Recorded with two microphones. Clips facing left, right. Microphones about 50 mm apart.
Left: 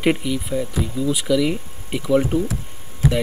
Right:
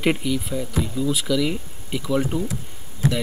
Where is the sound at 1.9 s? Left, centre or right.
Left.